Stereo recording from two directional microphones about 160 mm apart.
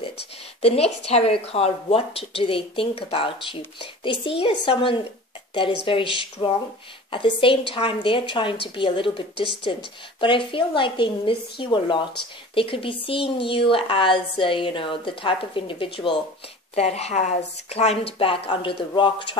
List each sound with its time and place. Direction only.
0.6 s speech: 40° left (ahead or behind)
10.2 s a woman's voice: 30° left (ahead or behind)